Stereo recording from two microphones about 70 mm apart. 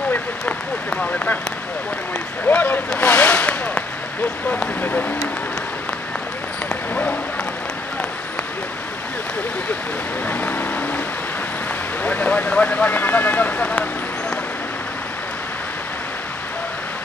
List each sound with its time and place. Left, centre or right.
0.8 s speech: centre
2.4 s speech: left
3.0 s a sound: left
10.2 s vehicle: left
12.0 s speech: left